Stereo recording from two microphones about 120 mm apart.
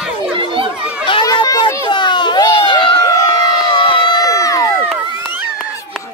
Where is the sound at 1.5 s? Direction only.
35° left (ahead or behind).